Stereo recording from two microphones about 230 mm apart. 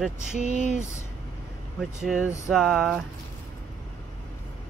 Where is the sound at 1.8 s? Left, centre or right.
Centre.